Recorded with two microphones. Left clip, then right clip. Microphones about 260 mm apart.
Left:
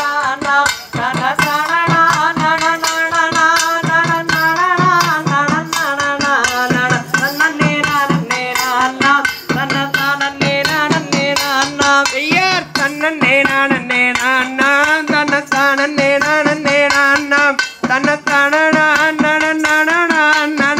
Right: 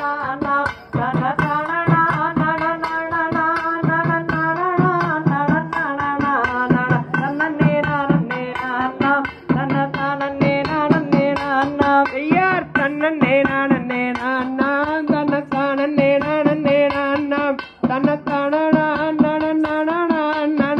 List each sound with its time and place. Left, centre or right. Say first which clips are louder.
4.3 s music: left 7 dB; right
10.0 s music: left 4 dB; right; by 20.7 s centre